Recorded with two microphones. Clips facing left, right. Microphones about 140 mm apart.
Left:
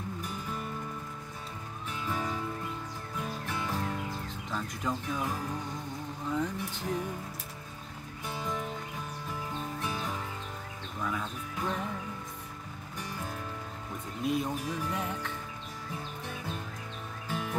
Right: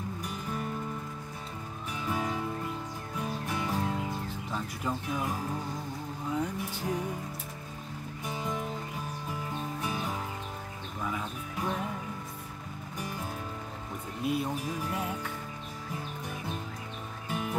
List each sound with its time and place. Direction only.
2.1 s music: 15° right (ahead or behind)
3.4 s music: 15° right (ahead or behind)
4.5 s a sound: 10° right (ahead or behind)
6.3 s vehicle: 10° right (ahead or behind)
8.3 s music: 15° right (ahead or behind)
14.2 s speech: 5° right (ahead or behind)
17.3 s music: 15° right (ahead or behind)